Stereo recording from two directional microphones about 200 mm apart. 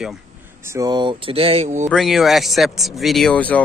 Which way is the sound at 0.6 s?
15° right (ahead or behind).